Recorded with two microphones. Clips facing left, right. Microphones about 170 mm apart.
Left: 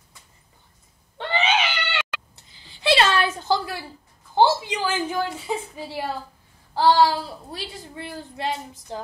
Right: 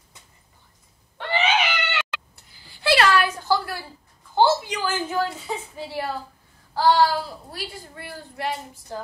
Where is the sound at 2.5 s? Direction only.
20° left (ahead or behind).